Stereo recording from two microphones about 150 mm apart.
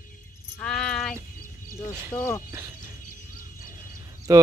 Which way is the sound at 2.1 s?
20° left (ahead or behind).